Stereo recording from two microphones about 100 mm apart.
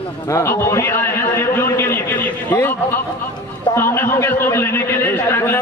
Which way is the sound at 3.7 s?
25° left (ahead or behind).